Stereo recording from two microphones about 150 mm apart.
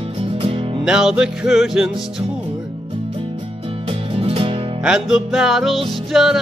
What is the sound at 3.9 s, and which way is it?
Music, 40° right (ahead or behind).